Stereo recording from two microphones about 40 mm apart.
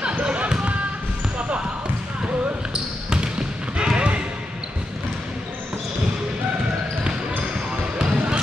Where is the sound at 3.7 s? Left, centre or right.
Right.